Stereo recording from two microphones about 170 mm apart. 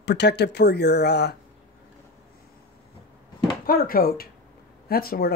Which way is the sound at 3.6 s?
60° left (ahead or behind).